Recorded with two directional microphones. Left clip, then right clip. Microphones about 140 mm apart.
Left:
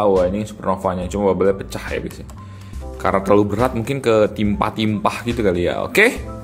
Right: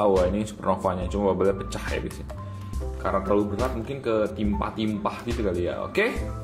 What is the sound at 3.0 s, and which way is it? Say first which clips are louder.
Speech: left 8 dB; 50° left (ahead or behind).